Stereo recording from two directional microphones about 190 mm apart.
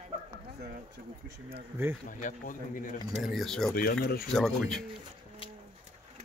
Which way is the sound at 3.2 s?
Centre (ahead or behind).